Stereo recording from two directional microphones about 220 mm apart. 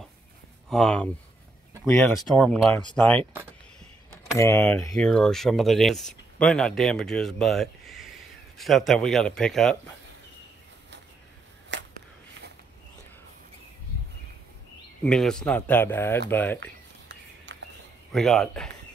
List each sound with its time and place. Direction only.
0.7 s speech: centre (ahead or behind)
2.1 s speech: 5° left (ahead or behind)
4.4 s speech: 10° left (ahead or behind)
11.7 s a sound: 55° right (ahead or behind)
15.0 s speech: 5° left (ahead or behind)
17.5 s a sound: 55° right (ahead or behind)
18.1 s speech: centre (ahead or behind)